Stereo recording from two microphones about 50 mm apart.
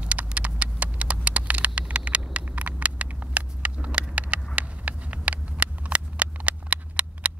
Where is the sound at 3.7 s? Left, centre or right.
Right.